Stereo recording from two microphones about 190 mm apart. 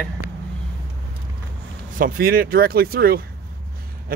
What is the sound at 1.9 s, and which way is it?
Speech, 50° right (ahead or behind).